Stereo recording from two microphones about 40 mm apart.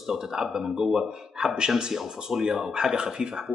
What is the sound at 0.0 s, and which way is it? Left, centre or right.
Speech, centre.